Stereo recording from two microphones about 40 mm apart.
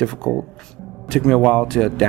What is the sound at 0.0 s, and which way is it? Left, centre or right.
Speech, centre.